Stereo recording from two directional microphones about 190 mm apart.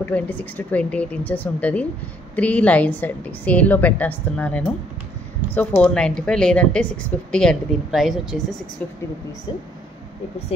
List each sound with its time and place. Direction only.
0.0 s a woman's voice: 10° left (ahead or behind)
5.8 s speech: 5° left (ahead or behind)